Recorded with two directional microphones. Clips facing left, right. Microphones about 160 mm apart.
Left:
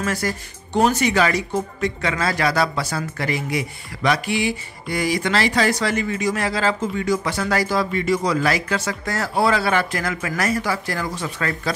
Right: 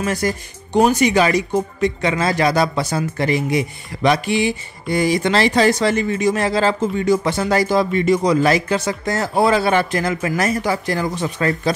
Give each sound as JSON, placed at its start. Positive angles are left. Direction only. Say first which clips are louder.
{"t": 0.0, "sound": "speech", "louder": "right 3 dB", "side_deg": -20}